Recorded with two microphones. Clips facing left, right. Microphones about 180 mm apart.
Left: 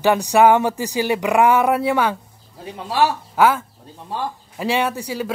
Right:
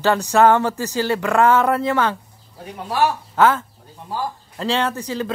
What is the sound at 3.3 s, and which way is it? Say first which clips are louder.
Speech: right 1 dB; 10° left (ahead or behind).